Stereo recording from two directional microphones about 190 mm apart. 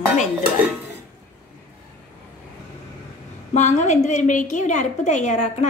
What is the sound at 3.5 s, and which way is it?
A woman's voice, 40° left (ahead or behind).